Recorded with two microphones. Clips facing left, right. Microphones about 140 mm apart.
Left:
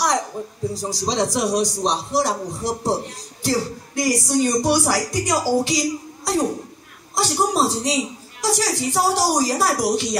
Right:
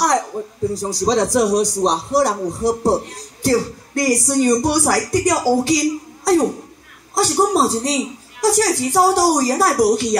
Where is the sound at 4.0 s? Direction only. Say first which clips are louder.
Right 3 dB; 60° right (ahead or behind).